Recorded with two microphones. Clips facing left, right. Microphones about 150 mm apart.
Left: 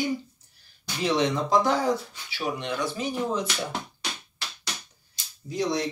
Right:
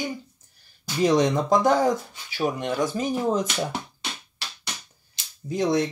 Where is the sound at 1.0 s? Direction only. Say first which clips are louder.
Right 4 dB; 45° right (ahead or behind).